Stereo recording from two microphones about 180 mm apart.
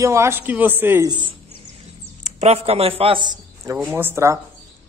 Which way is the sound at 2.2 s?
35° right (ahead or behind).